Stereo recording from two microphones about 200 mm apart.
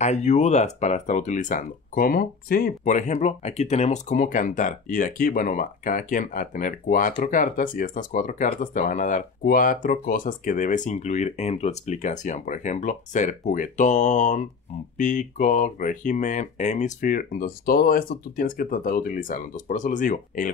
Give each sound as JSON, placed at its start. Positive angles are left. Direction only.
{"t": 0.0, "sound": "speech", "side_deg": 35}